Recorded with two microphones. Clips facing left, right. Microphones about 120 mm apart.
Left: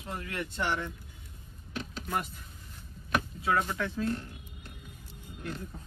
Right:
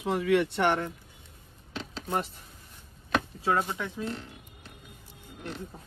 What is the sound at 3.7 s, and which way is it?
Speech, 15° right (ahead or behind).